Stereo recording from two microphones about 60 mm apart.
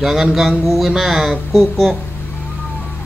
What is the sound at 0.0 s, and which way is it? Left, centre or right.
Speech, centre.